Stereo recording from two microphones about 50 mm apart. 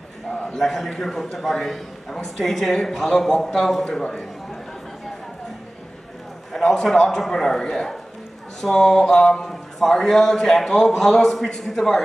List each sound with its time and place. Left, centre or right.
0.3 s a sound: centre
0.6 s a man's voice: centre
3.8 s a man's voice: centre
6.5 s a man's voice: centre